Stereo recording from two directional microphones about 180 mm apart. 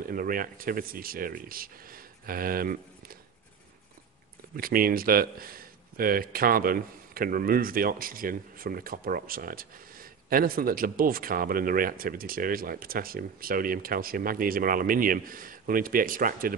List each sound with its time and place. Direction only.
0.0 s speech: 50° right (ahead or behind)
4.6 s a man's voice: 55° right (ahead or behind)